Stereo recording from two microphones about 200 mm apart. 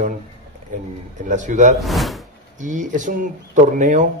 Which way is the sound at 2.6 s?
40° right (ahead or behind).